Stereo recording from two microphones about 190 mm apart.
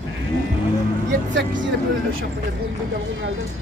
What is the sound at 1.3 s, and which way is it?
Speech, 75° right (ahead or behind).